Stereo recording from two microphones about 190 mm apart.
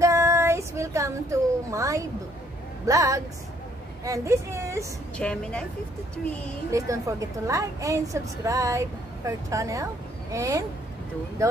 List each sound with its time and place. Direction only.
0.0 s child singing: 15° right (ahead or behind)
2.9 s a woman's voice: 15° right (ahead or behind)
5.1 s a woman's voice: 5° left (ahead or behind)
6.7 s a woman's voice: 15° right (ahead or behind)